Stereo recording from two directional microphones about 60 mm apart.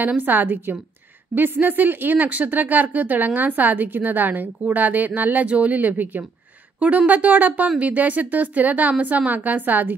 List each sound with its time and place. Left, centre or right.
0.0 s a woman's voice: right